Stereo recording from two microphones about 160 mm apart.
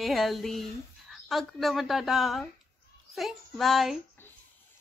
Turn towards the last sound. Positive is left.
turn(degrees=0)  # may be behind; listen again after turning